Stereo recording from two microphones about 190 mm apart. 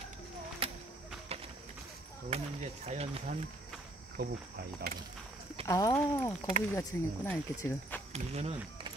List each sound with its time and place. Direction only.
1.3 s run: 30° right (ahead or behind)
2.2 s speech: 35° right (ahead or behind)
4.2 s speech: 55° right (ahead or behind)
5.7 s speech: 20° left (ahead or behind)
8.1 s speech: 35° right (ahead or behind)